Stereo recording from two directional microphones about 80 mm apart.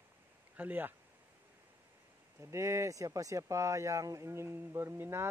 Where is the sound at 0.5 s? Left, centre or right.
Right.